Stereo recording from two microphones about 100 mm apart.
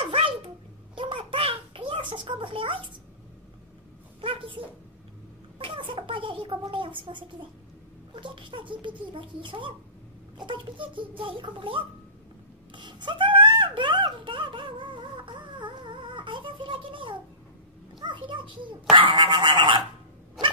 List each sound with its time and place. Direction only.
0.0 s dog: 65° right (ahead or behind)
0.9 s a sound: 60° right (ahead or behind)
4.2 s speech: 60° right (ahead or behind)
5.6 s speech: 60° right (ahead or behind)
12.7 s a sound: 55° right (ahead or behind)
17.9 s a child's voice: 55° right (ahead or behind)
18.9 s fowl: 55° right (ahead or behind)